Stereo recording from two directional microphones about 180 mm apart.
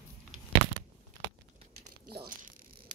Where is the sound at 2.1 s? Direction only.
65° right (ahead or behind).